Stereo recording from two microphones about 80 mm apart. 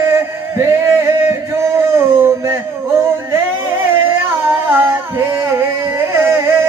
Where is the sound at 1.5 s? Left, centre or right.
Right.